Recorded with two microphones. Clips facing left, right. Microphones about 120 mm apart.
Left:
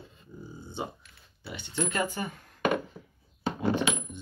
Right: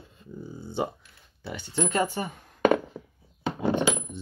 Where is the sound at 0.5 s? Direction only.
65° right (ahead or behind).